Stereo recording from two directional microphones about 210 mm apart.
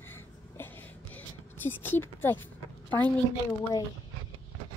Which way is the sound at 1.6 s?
10° left (ahead or behind).